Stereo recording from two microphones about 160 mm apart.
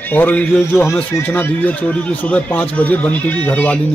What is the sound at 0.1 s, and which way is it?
Speech, 10° left (ahead or behind).